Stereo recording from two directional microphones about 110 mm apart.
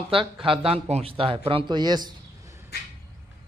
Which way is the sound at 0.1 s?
50° right (ahead or behind).